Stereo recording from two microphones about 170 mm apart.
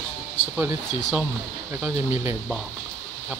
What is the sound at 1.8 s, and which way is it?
Speech, 15° right (ahead or behind).